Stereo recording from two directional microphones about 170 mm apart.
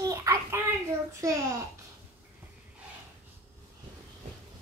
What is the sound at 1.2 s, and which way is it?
Speech, 20° right (ahead or behind).